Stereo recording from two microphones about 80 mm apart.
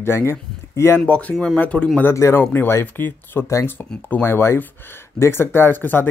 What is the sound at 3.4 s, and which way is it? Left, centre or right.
Speech, left.